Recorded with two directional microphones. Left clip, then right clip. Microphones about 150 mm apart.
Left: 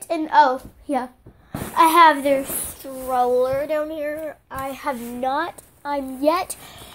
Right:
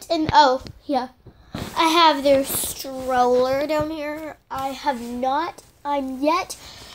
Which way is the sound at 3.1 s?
35° right (ahead or behind).